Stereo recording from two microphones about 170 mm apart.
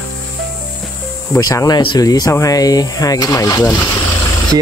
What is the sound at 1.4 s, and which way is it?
Speech, 20° left (ahead or behind).